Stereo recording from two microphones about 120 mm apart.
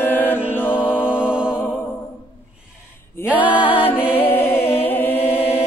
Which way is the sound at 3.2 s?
10° right (ahead or behind).